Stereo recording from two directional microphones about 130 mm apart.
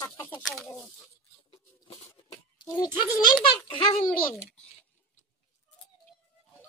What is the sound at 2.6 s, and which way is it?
A child's voice, 30° left (ahead or behind).